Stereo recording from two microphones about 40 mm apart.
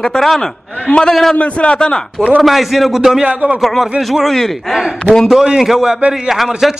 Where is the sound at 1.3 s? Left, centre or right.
Left.